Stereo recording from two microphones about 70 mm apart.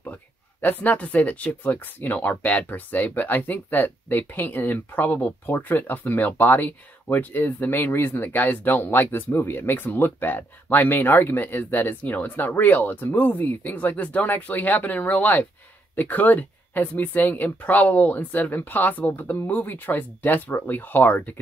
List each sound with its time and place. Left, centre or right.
0.0 s speech: left